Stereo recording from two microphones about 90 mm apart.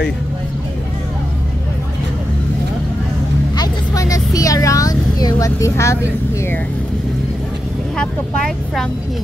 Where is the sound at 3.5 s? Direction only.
45° left (ahead or behind).